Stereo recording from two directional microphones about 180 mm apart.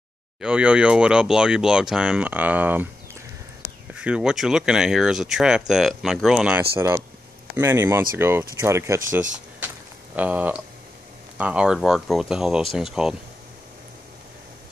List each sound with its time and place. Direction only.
0.4 s speech: 5° right (ahead or behind)
4.0 s speech: 5° right (ahead or behind)